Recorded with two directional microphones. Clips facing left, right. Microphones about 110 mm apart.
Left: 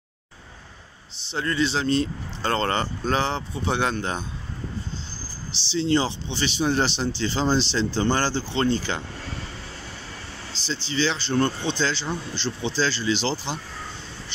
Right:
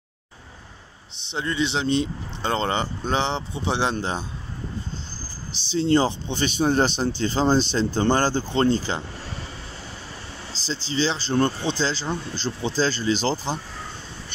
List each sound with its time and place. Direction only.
1.3 s speech: 20° right (ahead or behind)
5.7 s speech: 40° right (ahead or behind)
8.0 s speech: 30° right (ahead or behind)
8.3 s speech: 45° right (ahead or behind)
10.7 s speech: 35° right (ahead or behind)